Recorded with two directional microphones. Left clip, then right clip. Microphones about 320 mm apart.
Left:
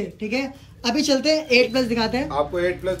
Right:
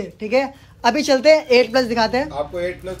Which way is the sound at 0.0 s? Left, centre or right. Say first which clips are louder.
Right 7 dB; centre.